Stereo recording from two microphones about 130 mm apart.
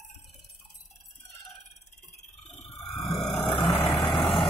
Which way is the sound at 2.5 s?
50° left (ahead or behind).